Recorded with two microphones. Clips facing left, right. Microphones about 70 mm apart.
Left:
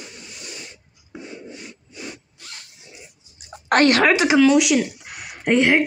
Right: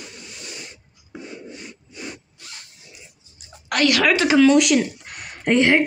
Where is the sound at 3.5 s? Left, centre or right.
Left.